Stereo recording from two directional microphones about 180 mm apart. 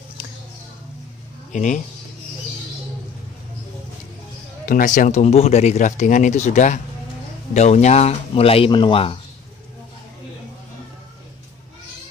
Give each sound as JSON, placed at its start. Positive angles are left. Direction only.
{"t": 1.5, "sound": "speech", "side_deg": 45}
{"t": 4.6, "sound": "speech", "side_deg": 50}